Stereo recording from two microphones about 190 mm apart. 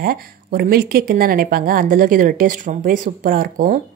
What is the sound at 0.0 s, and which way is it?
Speech, 50° right (ahead or behind).